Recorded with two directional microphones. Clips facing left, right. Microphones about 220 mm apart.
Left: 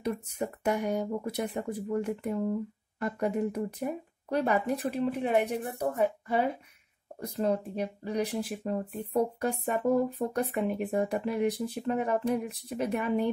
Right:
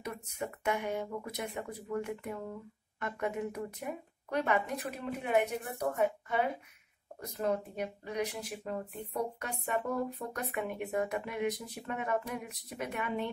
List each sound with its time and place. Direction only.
0.0 s speech: 30° left (ahead or behind)